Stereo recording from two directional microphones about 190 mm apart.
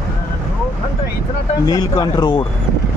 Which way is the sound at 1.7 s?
20° left (ahead or behind).